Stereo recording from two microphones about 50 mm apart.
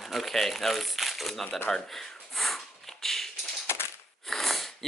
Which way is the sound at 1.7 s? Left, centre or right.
Centre.